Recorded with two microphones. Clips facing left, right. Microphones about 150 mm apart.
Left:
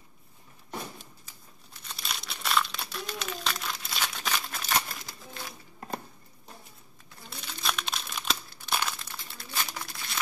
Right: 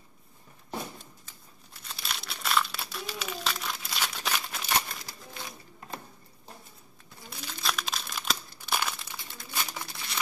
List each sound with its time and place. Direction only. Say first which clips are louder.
1.7 s crumpling: even; centre (ahead or behind)
7.2 s crumpling: even; centre (ahead or behind)